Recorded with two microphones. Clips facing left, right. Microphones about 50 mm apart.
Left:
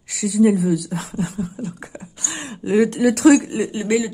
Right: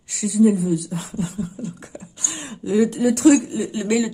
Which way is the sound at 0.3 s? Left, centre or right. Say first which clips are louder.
Left 1 dB; left.